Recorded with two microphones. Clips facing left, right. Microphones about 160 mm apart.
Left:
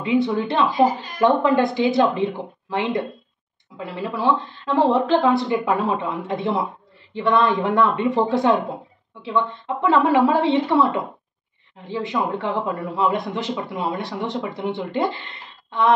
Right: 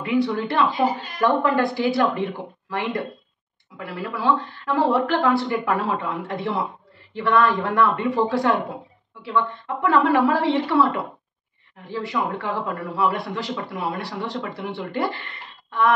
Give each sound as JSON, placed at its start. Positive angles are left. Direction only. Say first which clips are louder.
{"t": 0.0, "sound": "a man's voice", "louder": "left 2 dB", "side_deg": 20}